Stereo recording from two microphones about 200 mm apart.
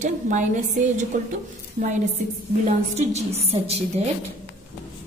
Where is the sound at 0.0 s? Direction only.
40° right (ahead or behind).